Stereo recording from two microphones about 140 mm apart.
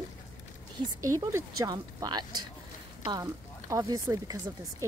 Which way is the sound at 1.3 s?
25° right (ahead or behind).